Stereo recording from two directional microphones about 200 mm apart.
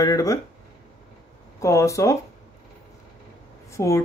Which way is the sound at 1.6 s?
15° left (ahead or behind).